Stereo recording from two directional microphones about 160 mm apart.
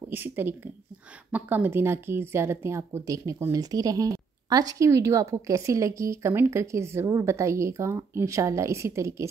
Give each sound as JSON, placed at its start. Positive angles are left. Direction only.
{"t": 0.1, "sound": "speech", "side_deg": -15}